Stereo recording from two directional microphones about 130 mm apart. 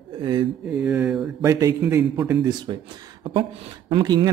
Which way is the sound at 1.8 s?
15° right (ahead or behind).